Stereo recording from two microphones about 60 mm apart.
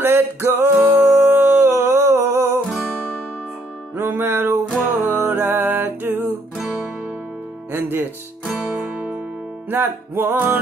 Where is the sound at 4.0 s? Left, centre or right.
Right.